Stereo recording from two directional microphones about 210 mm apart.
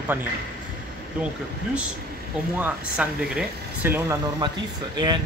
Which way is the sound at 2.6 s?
5° right (ahead or behind).